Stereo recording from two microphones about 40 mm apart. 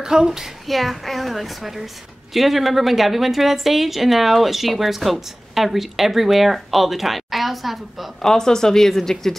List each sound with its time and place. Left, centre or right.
0.0 s speech: centre
0.7 s a woman's voice: centre
8.2 s a woman's voice: centre